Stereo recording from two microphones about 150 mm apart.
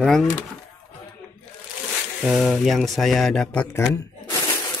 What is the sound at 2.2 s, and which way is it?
Speech, 5° right (ahead or behind).